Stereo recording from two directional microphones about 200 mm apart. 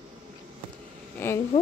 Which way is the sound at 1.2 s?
10° left (ahead or behind).